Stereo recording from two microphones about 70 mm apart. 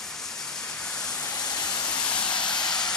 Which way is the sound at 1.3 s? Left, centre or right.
Left.